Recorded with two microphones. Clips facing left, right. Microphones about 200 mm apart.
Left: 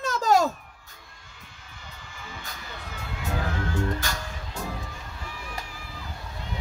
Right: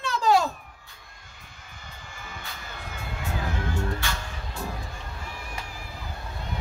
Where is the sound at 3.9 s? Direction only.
40° left (ahead or behind).